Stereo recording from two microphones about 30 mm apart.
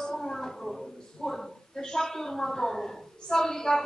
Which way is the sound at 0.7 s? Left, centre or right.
Centre.